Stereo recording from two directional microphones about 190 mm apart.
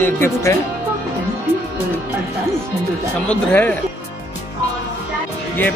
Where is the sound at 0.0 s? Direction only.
15° left (ahead or behind).